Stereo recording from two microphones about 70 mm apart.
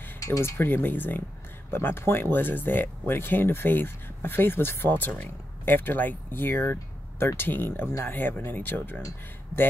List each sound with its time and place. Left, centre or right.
0.6 s speech: left